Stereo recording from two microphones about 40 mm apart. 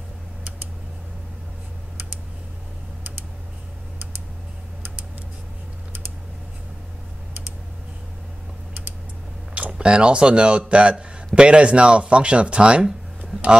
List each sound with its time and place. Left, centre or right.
9.5 s speech: right